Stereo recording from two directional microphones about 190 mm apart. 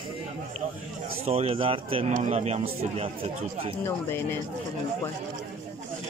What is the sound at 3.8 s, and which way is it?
Speech, 10° left (ahead or behind).